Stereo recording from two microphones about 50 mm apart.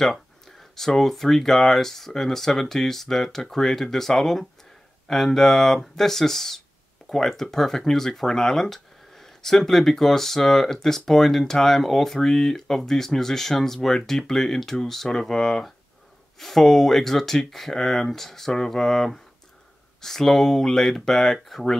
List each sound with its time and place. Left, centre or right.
0.1 s speech: centre